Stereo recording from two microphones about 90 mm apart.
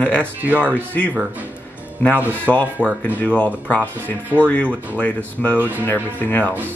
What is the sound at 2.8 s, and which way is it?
Speech, 20° right (ahead or behind).